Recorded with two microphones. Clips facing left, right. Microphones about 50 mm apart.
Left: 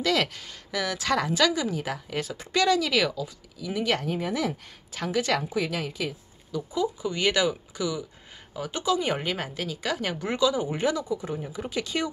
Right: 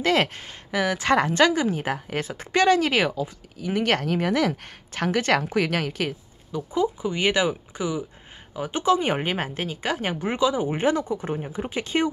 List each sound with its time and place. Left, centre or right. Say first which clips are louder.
0.0 s speech: right 4 dB; right
6.5 s speech: right 3 dB; right